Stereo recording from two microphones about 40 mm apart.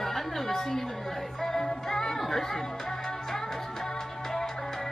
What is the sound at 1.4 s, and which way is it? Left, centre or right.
Music, centre.